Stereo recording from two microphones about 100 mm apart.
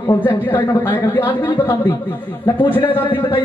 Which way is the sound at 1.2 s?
20° left (ahead or behind).